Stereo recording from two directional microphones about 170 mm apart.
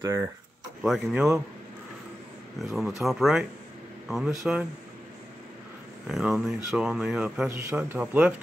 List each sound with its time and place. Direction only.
0.0 s speech: 15° right (ahead or behind)
0.8 s speech: centre (ahead or behind)
2.6 s speech: centre (ahead or behind)
6.0 s speech: centre (ahead or behind)